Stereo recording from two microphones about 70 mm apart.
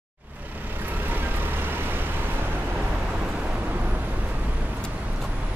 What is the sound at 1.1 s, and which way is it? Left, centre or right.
Vehicle, right.